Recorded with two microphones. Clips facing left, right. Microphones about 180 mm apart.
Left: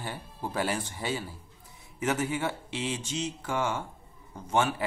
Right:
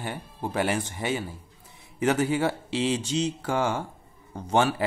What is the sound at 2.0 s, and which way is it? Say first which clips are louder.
Speech: right 6 dB; 30° right (ahead or behind).